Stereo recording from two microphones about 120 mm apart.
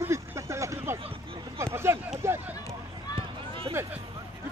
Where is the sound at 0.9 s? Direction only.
50° right (ahead or behind).